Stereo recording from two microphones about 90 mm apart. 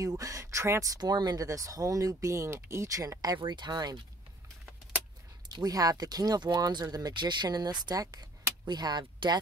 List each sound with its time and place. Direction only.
0.0 s speech: 40° right (ahead or behind)
3.3 s speech: 55° right (ahead or behind)
5.5 s speech: 45° right (ahead or behind)